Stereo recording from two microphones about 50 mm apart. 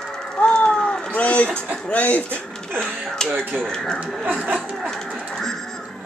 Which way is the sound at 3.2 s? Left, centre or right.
Centre.